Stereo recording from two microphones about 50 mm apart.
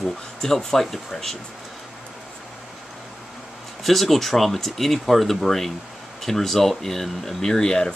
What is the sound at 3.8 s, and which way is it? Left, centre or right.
Speech, centre.